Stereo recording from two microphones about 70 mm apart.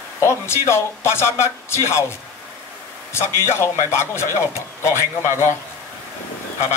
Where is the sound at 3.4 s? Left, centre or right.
Left.